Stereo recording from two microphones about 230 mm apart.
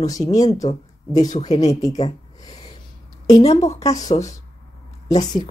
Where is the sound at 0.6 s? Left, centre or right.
Left.